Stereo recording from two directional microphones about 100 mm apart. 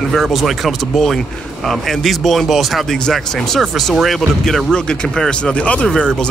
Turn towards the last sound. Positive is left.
turn(degrees=5)  # may be behind; listen again after turning